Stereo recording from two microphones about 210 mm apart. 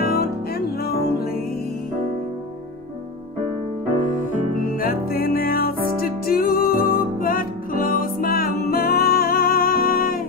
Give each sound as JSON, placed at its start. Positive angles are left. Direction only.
{"t": 0.0, "sound": "music", "side_deg": 45}
{"t": 4.6, "sound": "music", "side_deg": 45}